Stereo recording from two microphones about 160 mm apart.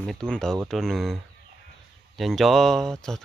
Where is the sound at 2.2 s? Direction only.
Centre (ahead or behind).